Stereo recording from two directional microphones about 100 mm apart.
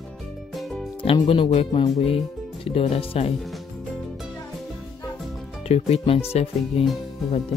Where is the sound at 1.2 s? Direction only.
55° left (ahead or behind).